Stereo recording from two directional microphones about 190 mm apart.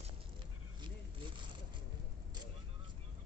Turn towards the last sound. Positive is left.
turn(degrees=-25)  # may be behind; listen again after turning